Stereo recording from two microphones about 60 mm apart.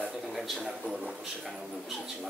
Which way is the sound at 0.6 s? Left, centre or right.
Centre.